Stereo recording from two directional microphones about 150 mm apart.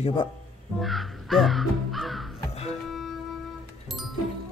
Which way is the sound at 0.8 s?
Centre (ahead or behind).